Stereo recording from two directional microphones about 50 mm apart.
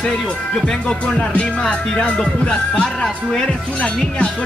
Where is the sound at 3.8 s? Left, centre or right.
Left.